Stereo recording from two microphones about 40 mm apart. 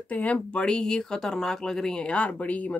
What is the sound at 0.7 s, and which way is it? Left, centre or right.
Speech, centre.